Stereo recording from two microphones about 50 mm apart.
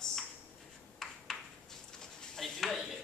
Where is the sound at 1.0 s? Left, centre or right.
Centre.